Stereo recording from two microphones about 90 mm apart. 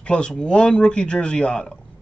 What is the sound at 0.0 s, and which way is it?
A man's voice, 10° left (ahead or behind).